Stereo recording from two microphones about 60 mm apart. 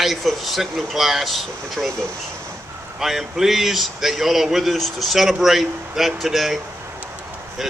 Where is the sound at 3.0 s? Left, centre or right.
Centre.